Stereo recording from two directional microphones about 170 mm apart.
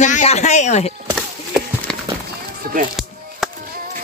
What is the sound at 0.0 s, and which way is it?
Speech, 45° left (ahead or behind).